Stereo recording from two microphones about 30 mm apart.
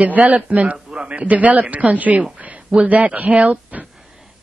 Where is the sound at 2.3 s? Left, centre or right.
Right.